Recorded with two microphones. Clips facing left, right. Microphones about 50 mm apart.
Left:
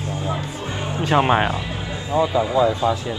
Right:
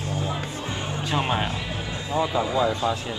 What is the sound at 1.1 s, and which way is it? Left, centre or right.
Speech, left.